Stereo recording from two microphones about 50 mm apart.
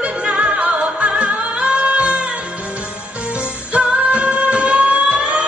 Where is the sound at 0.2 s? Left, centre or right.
Centre.